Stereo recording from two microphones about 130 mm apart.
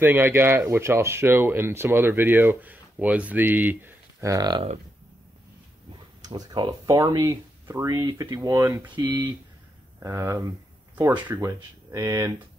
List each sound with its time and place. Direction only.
0.0 s speech: 15° right (ahead or behind); by 4.6 s 30° right (ahead or behind)
6.2 s speech: 35° right (ahead or behind)
9.9 s speech: 25° right (ahead or behind)